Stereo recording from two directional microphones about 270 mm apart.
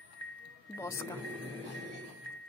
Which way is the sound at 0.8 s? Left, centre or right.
Centre.